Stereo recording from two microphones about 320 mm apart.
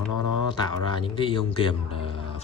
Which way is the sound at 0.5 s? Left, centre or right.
Centre.